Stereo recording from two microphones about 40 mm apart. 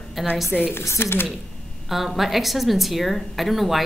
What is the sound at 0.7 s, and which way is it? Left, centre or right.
Speech, left.